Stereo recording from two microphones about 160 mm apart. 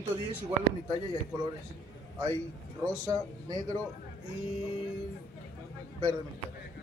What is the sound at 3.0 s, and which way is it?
Speech, 20° right (ahead or behind).